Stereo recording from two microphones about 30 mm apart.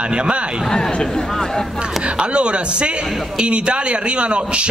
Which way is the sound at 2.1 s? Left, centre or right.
Right.